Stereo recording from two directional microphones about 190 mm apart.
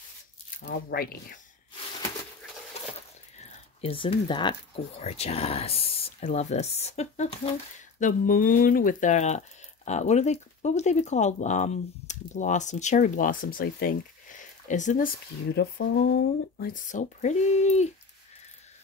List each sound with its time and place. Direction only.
0.6 s speech: 65° left (ahead or behind)
2.8 s a sound: 35° left (ahead or behind)
3.8 s speech: 30° left (ahead or behind)
15.5 s speech: 60° left (ahead or behind)
16.5 s speech: 45° left (ahead or behind)